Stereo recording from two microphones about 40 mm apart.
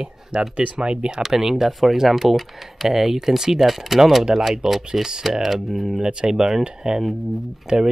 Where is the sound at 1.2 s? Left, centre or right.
Centre.